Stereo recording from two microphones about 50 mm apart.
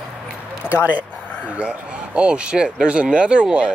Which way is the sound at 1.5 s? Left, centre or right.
Right.